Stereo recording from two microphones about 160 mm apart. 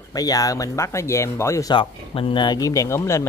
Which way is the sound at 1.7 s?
35° left (ahead or behind).